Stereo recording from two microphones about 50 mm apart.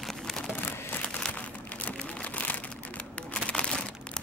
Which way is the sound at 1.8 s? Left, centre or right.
Left.